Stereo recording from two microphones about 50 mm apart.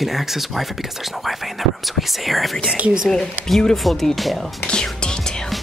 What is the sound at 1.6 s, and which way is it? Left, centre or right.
Speech, centre.